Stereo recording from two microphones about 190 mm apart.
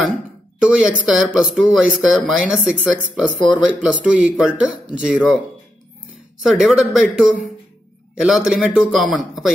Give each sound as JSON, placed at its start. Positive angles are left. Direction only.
{"t": 0.8, "sound": "speech", "side_deg": -5}
{"t": 6.5, "sound": "speech", "side_deg": 0}